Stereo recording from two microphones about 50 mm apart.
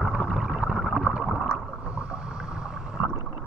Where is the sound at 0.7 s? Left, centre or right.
Centre.